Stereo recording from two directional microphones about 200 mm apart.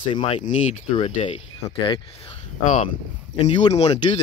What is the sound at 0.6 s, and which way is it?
Speech, 35° left (ahead or behind).